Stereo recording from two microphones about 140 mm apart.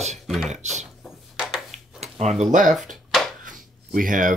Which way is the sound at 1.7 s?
50° right (ahead or behind).